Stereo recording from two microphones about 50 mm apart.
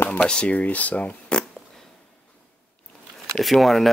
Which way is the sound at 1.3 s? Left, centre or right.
Centre.